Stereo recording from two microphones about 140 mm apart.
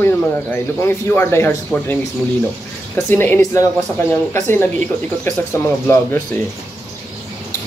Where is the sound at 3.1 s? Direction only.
15° left (ahead or behind).